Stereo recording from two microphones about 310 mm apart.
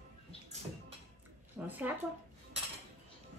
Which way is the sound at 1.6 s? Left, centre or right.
Centre.